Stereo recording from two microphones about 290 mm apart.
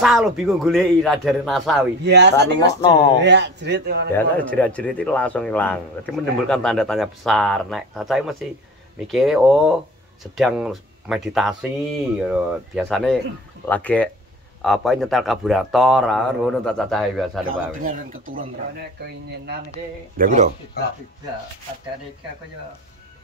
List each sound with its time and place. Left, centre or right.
0.0 s speech: centre
2.0 s a man's voice: right
2.8 s speech: centre
3.2 s a man's voice: right
4.1 s speech: centre
17.5 s speech: right
20.2 s speech: right